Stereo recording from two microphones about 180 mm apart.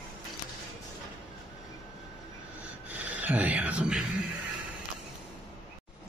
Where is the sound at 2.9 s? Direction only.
10° right (ahead or behind).